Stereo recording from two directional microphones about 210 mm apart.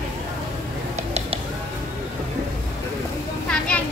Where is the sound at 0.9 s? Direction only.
30° right (ahead or behind).